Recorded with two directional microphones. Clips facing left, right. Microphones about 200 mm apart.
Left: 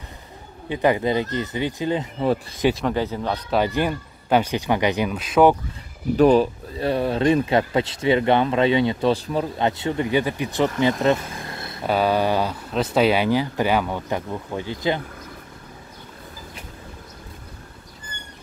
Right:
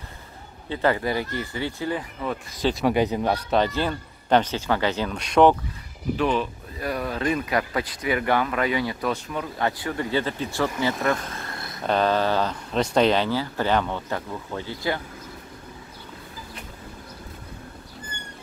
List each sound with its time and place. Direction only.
0.7 s speech: 15° left (ahead or behind)
2.9 s a man's voice: 15° right (ahead or behind)
3.4 s speech: 10° left (ahead or behind)
5.1 s speech: 5° left (ahead or behind)
6.1 s speech: 40° left (ahead or behind)
9.6 s speech: 25° left (ahead or behind)
11.8 s speech: 10° left (ahead or behind)